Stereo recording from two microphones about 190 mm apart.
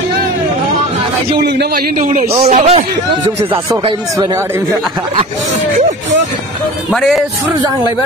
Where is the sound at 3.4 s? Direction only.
25° right (ahead or behind).